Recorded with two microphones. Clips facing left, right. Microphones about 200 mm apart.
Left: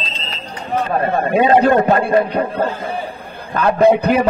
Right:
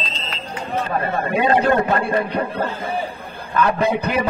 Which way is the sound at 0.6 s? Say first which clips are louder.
Left 4 dB; 45° left (ahead or behind).